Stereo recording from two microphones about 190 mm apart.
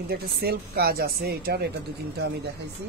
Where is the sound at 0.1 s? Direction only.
55° right (ahead or behind).